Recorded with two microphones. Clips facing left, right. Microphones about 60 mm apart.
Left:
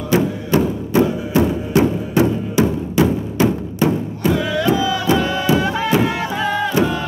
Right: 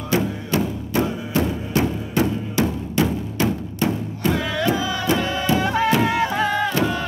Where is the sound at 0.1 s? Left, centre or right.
Centre.